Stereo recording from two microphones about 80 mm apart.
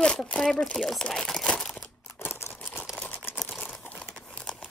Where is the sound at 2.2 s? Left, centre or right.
Left.